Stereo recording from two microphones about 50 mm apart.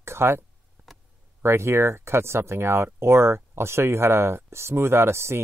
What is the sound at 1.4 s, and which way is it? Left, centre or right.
Speech, right.